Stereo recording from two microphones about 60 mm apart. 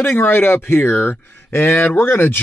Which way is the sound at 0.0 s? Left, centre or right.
Left.